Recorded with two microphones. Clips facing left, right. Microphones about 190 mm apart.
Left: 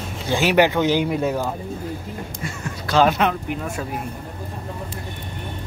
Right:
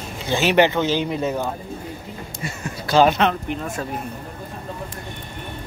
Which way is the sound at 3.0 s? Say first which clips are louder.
Right 1 dB; 5° left (ahead or behind).